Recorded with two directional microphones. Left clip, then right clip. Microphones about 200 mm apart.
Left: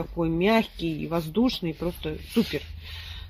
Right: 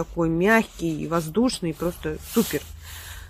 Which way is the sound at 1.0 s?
20° right (ahead or behind).